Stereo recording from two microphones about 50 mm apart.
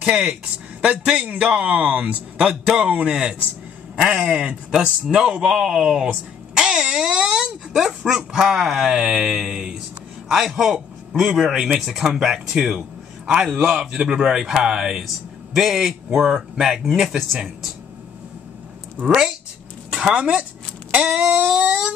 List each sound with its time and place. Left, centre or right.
0.8 s a man's voice: right
6.5 s a sound: centre
7.7 s a man's voice: centre
13.6 s a man's voice: right
19.0 s speech: centre
20.9 s a sound: centre
21.3 s a man's voice: right